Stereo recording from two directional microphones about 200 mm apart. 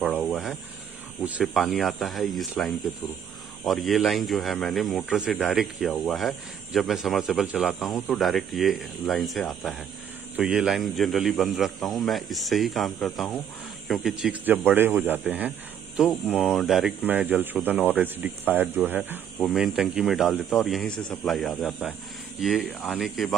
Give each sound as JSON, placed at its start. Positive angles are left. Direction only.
{"t": 0.1, "sound": "snake", "side_deg": 0}
{"t": 1.4, "sound": "speech", "side_deg": 0}